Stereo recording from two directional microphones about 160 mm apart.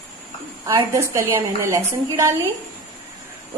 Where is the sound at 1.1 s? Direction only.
15° right (ahead or behind).